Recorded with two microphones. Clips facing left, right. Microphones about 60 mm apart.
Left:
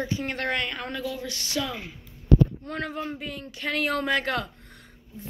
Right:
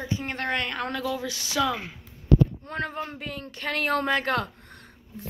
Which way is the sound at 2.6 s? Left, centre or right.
Right.